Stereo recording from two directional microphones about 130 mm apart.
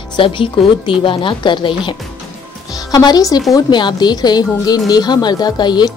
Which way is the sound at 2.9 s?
30° left (ahead or behind).